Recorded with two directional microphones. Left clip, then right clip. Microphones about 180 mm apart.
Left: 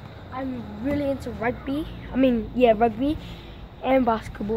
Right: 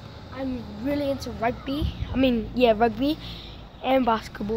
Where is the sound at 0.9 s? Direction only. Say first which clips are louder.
Left 1 dB; 20° right (ahead or behind).